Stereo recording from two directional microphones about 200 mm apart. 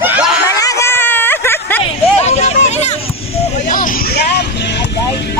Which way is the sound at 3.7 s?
55° left (ahead or behind).